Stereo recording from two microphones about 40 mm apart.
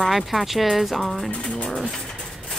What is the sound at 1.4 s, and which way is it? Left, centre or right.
Speech, left.